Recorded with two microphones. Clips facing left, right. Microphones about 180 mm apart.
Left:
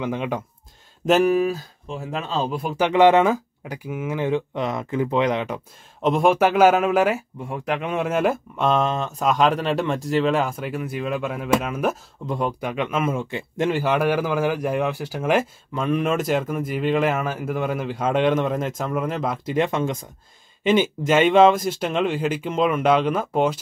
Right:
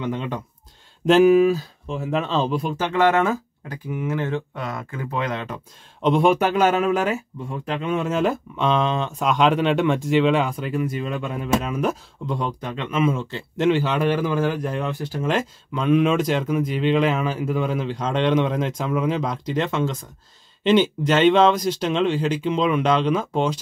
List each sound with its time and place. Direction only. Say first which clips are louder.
0.0 s a man's voice: left 1 dB; 10° left (ahead or behind)
2.9 s a man's voice: left 4 dB; 15° left (ahead or behind)
6.0 s a man's voice: even; 5° left (ahead or behind)